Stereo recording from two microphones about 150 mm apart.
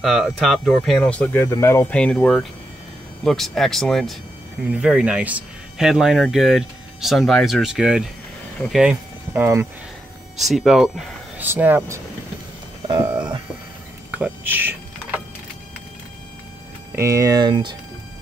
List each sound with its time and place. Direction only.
0.0 s speech: centre (ahead or behind); by 2.0 s 20° left (ahead or behind)
2.0 s speech: 5° left (ahead or behind)
9.3 s speech: 15° right (ahead or behind)
10.3 s speech: centre (ahead or behind)
11.4 s speech: 15° right (ahead or behind)
13.0 s a sound: 15° right (ahead or behind)
16.9 s speech: 20° right (ahead or behind)